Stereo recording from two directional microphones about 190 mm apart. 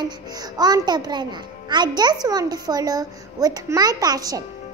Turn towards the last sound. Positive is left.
turn(degrees=-20)  # may be behind; listen again after turning